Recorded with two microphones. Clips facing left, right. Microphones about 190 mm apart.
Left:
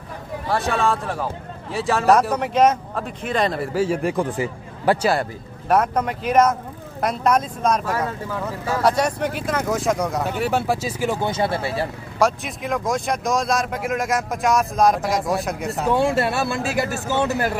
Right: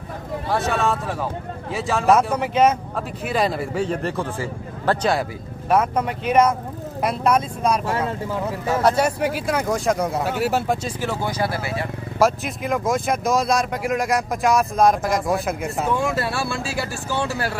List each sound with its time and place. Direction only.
0.5 s speech: centre (ahead or behind)
5.7 s speech: centre (ahead or behind)
7.8 s speech: 25° right (ahead or behind)
8.8 s speech: 5° right (ahead or behind)
11.2 s speech: 25° left (ahead or behind)
12.2 s speech: centre (ahead or behind)
15.9 s speech: 30° left (ahead or behind)